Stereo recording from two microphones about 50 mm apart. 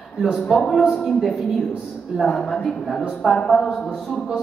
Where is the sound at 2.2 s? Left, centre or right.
Centre.